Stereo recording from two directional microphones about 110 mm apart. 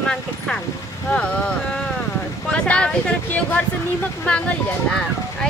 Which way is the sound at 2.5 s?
10° left (ahead or behind).